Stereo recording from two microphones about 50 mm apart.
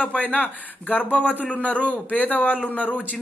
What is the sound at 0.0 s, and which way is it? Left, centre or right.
A man's voice, left.